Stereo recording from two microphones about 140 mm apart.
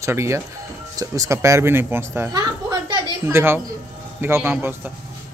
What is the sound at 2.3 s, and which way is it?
Music, 25° right (ahead or behind).